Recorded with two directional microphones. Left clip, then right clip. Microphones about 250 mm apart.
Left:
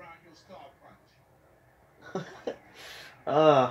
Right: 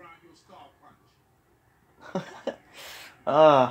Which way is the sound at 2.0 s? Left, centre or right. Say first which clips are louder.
Right 3 dB; right.